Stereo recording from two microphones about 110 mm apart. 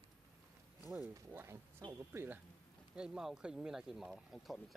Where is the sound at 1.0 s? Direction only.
20° right (ahead or behind).